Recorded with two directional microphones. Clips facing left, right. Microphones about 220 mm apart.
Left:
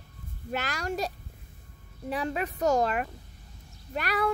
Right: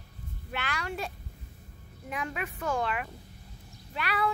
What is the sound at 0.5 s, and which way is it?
Speech, 40° left (ahead or behind).